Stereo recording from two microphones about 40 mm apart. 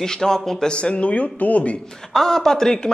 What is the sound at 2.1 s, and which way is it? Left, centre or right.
Speech, centre.